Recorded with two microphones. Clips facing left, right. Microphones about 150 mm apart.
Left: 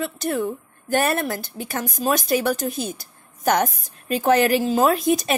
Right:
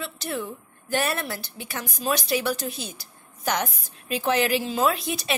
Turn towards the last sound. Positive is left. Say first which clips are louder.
# left 6 dB
turn(degrees=45)  # may be behind; listen again after turning